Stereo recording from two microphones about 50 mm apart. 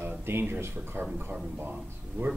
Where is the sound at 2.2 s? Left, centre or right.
Right.